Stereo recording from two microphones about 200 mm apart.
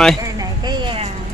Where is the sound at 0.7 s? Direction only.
25° right (ahead or behind).